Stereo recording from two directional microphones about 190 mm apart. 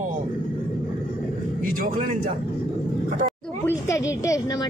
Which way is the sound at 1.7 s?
50° right (ahead or behind).